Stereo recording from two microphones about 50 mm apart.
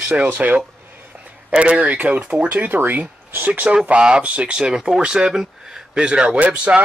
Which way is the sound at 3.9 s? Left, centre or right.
Centre.